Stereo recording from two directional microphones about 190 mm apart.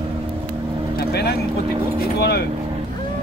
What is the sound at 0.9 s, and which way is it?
Vehicle, 55° left (ahead or behind).